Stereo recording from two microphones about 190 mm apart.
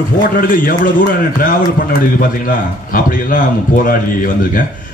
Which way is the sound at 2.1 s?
45° left (ahead or behind).